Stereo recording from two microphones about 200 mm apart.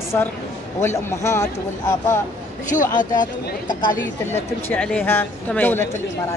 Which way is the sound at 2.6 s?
40° left (ahead or behind).